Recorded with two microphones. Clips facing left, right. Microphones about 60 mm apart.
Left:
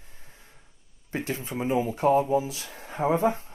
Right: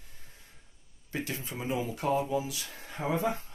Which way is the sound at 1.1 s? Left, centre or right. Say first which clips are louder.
Left 5 dB; left.